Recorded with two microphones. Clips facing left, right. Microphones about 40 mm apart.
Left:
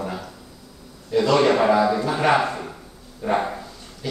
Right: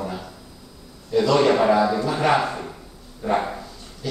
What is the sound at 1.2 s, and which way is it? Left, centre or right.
A man's voice, centre.